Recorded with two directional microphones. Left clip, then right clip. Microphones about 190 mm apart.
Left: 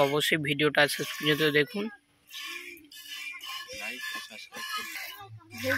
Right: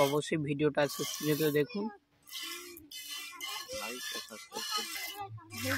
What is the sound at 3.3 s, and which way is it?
Music, 45° right (ahead or behind).